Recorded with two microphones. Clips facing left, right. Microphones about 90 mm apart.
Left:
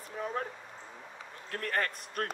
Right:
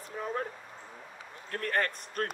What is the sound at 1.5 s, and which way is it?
Speech, 40° right (ahead or behind).